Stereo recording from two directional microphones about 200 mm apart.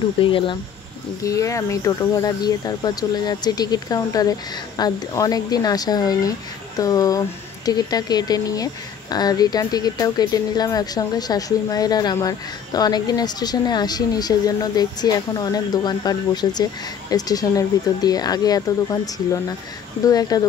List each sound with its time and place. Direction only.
0.2 s speech: 25° left (ahead or behind)